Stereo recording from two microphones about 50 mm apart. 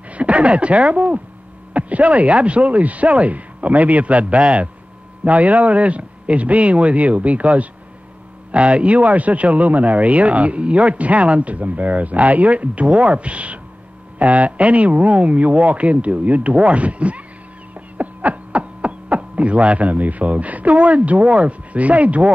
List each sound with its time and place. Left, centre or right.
0.1 s speech: right
17.7 s a sound: right
20.8 s speech: right